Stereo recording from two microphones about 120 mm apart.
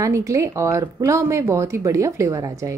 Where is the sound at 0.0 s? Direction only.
25° right (ahead or behind).